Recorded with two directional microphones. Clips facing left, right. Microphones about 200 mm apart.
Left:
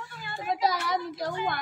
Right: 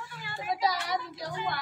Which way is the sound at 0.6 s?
50° left (ahead or behind).